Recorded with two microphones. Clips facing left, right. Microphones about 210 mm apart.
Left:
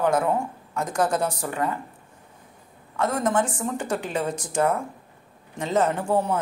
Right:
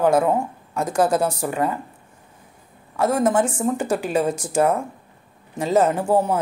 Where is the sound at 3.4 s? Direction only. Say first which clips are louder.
Right 6 dB; 25° right (ahead or behind).